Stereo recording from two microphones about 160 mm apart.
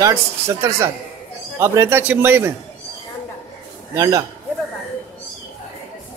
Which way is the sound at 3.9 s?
25° right (ahead or behind).